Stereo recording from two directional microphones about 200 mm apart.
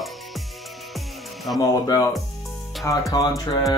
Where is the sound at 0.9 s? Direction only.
Centre (ahead or behind).